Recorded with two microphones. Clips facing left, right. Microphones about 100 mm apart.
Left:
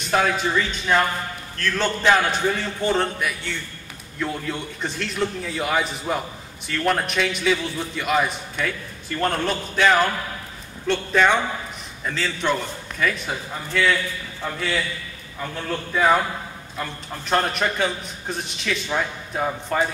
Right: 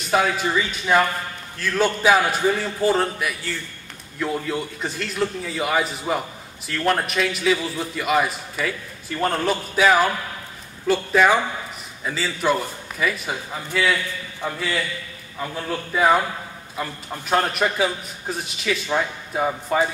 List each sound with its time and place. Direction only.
0.1 s a man's voice: 5° right (ahead or behind)